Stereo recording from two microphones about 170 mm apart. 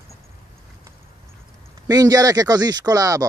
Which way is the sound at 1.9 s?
20° right (ahead or behind).